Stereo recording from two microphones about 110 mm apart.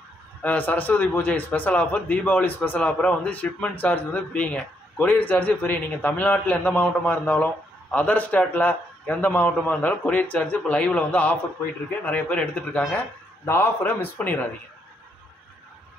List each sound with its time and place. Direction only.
0.4 s speech: 15° left (ahead or behind)